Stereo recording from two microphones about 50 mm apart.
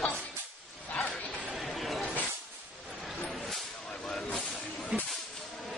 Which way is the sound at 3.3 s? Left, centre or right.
Centre.